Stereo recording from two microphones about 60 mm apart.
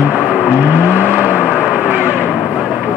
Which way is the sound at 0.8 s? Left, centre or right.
Right.